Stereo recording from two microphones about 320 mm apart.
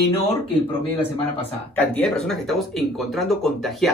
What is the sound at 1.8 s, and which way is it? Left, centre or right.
Speech, centre.